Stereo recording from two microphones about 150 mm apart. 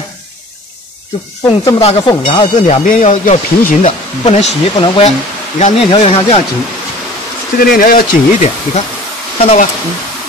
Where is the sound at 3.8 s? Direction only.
50° left (ahead or behind).